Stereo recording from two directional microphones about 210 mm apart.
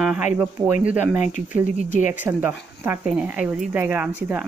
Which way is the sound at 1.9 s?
35° left (ahead or behind).